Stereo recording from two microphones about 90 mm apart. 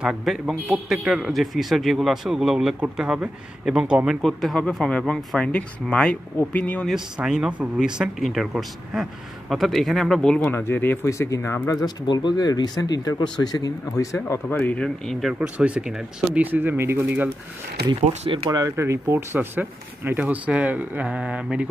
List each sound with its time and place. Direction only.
0.2 s a man's voice: centre (ahead or behind)
4.2 s speech: centre (ahead or behind)
7.2 s speech: 10° right (ahead or behind)
8.2 s a man's voice: centre (ahead or behind)
10.5 s speech: 25° left (ahead or behind)
11.1 s speech: 35° left (ahead or behind)
11.6 s speech: 45° left (ahead or behind)
14.5 s speech: 20° left (ahead or behind)
14.8 s a man's voice: 5° left (ahead or behind)
15.4 s speech: 15° right (ahead or behind)
17.8 s speech: 50° right (ahead or behind)
18.8 s speech: 30° right (ahead or behind); by 21.6 s 10° right (ahead or behind)